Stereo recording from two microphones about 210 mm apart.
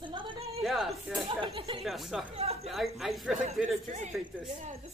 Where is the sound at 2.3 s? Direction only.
30° right (ahead or behind).